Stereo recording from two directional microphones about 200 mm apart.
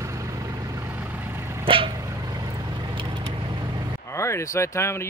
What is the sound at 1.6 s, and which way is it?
Vehicle, 25° right (ahead or behind).